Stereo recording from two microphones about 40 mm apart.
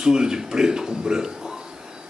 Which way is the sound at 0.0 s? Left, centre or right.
Centre.